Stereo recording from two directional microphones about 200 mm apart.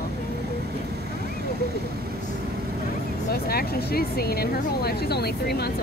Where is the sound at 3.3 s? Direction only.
50° left (ahead or behind).